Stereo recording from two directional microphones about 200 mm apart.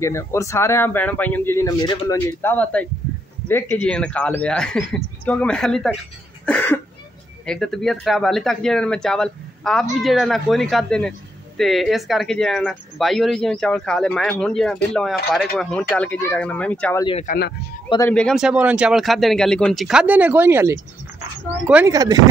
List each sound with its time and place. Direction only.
0.0 s a man's voice: 15° left (ahead or behind)
6.4 s cough: 10° left (ahead or behind)
7.4 s a man's voice: centre (ahead or behind)
17.2 s speech: 50° left (ahead or behind)
17.8 s a man's voice: 20° left (ahead or behind)
18.1 s a man's voice: centre (ahead or behind)
21.9 s speech: 20° right (ahead or behind)